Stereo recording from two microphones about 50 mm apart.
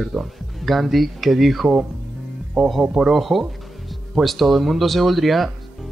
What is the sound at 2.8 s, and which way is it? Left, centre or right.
Speech, centre.